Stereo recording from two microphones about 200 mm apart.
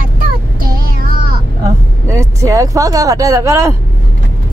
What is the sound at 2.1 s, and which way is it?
Speech, 15° right (ahead or behind).